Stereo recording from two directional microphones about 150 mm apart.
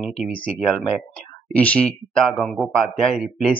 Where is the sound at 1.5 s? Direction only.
10° left (ahead or behind).